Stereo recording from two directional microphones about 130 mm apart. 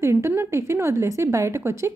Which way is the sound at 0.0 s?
20° right (ahead or behind).